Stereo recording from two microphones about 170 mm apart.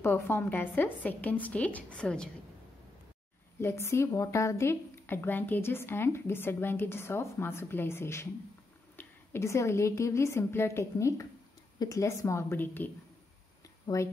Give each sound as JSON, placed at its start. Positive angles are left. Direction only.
{"t": 0.0, "sound": "a woman's voice", "side_deg": 15}
{"t": 3.6, "sound": "a woman's voice", "side_deg": 15}
{"t": 13.9, "sound": "speech", "side_deg": 20}